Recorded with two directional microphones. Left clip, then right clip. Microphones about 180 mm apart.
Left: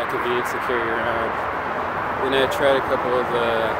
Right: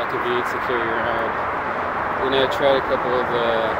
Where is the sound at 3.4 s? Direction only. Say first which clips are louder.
Right 1 dB; 5° left (ahead or behind).